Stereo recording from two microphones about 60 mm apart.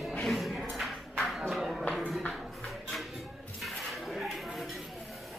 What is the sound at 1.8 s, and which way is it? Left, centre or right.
Music, centre.